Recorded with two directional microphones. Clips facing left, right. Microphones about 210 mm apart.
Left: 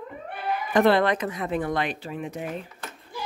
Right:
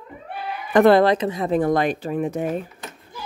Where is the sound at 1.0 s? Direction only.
30° right (ahead or behind); by 2.6 s 45° right (ahead or behind).